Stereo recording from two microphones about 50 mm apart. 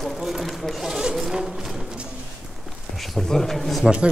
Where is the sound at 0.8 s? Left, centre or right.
Centre.